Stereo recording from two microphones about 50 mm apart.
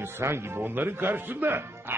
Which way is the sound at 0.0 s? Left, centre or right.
Right.